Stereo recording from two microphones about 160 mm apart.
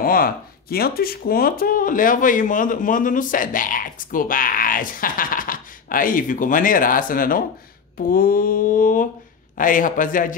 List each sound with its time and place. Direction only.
0.0 s speech: 65° left (ahead or behind)